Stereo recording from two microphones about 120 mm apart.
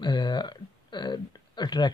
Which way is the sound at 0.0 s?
40° left (ahead or behind).